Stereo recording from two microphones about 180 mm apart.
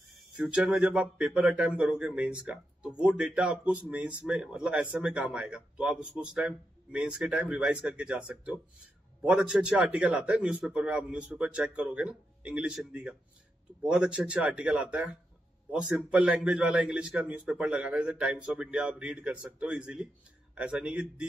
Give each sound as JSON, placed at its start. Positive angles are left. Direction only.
{"t": 0.3, "sound": "a man's voice", "side_deg": -5}